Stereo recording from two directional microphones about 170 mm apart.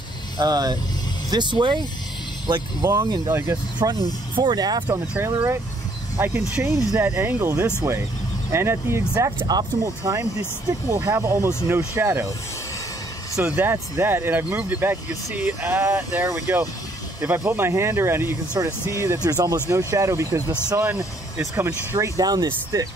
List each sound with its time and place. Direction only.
0.4 s speech: 25° right (ahead or behind)
4.4 s speech: 25° right (ahead or behind)
4.8 s speech: 15° right (ahead or behind)
13.4 s speech: 10° right (ahead or behind)